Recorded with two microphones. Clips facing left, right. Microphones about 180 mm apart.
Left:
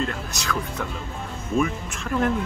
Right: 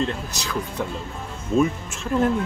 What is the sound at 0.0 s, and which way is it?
Speech, 30° right (ahead or behind).